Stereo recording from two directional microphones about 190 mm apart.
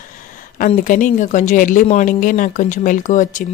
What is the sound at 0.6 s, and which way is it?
Speech, 45° left (ahead or behind).